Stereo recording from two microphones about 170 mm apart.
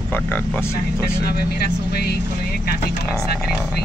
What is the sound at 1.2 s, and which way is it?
Speech, 65° left (ahead or behind).